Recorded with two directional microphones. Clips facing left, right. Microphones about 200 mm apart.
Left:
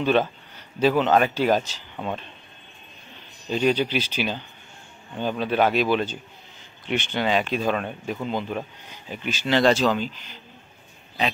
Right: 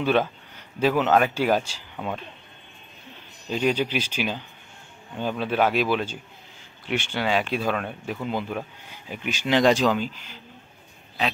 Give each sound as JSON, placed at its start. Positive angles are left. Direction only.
{"t": 0.0, "sound": "speech", "side_deg": -10}
{"t": 3.4, "sound": "speech", "side_deg": -5}